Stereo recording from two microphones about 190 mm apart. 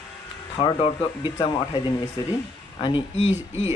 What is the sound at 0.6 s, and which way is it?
Speech, 25° left (ahead or behind).